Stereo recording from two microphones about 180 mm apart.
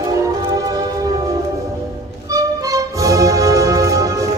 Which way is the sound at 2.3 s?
20° right (ahead or behind).